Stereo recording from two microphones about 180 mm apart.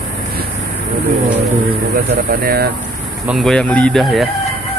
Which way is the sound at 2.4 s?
55° right (ahead or behind).